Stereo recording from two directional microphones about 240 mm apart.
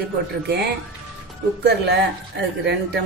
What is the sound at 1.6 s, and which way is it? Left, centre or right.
Speech, right.